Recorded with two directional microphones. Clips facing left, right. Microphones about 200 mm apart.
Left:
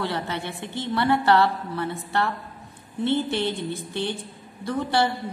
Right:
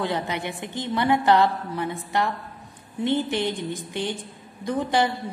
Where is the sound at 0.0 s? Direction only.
15° right (ahead or behind).